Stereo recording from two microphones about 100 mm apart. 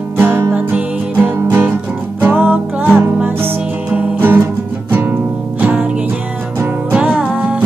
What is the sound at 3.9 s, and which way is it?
Music, 20° right (ahead or behind).